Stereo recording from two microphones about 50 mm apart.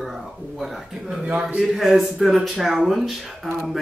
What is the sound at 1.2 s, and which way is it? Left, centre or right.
Speech, right.